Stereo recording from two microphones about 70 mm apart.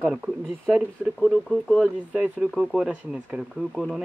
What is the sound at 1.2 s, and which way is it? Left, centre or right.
Speech, centre.